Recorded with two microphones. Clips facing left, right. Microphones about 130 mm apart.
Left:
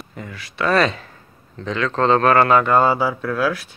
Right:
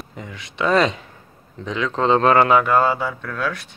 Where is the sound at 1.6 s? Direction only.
15° right (ahead or behind); by 3.7 s 5° left (ahead or behind).